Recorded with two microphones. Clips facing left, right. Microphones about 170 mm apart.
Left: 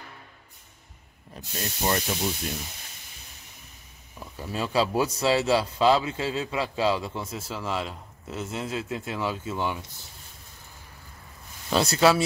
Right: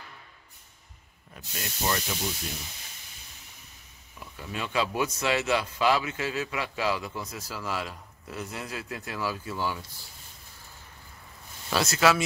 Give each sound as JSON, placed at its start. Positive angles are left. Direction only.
{"t": 1.3, "sound": "speech", "side_deg": 35}
{"t": 4.4, "sound": "a man's voice", "side_deg": 35}
{"t": 11.7, "sound": "a man's voice", "side_deg": 30}